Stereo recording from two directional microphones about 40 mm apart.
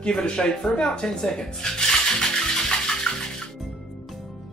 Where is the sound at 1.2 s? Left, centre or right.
Centre.